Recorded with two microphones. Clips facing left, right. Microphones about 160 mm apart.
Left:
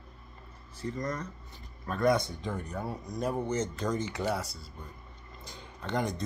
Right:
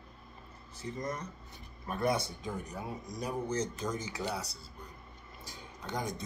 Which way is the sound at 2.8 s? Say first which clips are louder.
Left 5 dB; 50° left (ahead or behind).